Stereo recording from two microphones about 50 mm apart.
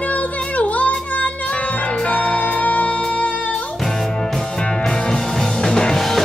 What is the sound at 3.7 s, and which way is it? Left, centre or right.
Music, centre.